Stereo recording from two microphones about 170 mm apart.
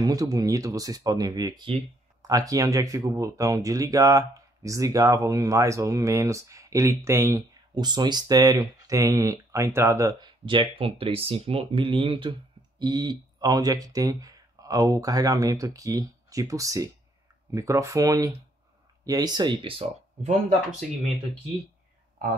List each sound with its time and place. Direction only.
0.0 s speech: 20° right (ahead or behind)
20.8 s speech: centre (ahead or behind)